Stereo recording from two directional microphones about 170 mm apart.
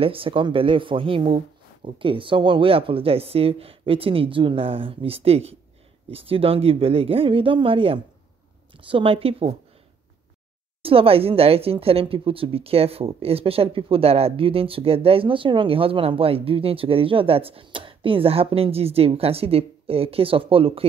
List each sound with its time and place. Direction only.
0.0 s a woman's voice: 30° right (ahead or behind)
10.8 s a woman's voice: 35° right (ahead or behind)